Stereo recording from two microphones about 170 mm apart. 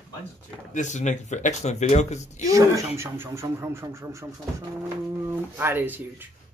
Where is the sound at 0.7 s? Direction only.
45° left (ahead or behind).